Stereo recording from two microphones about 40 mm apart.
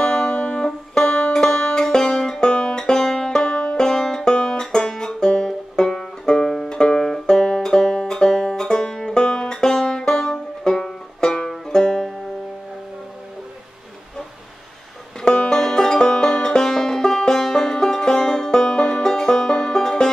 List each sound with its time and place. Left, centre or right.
0.0 s music: centre
15.2 s music: centre